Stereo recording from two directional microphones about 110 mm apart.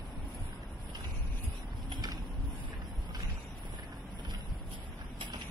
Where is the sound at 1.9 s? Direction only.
35° right (ahead or behind).